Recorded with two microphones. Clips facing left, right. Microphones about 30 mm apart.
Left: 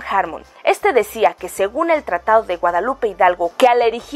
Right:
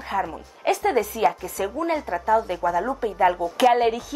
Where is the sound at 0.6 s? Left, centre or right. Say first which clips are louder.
Left 7 dB; left.